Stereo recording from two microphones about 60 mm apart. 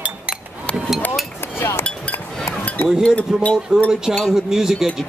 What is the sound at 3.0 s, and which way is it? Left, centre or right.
Speech, left.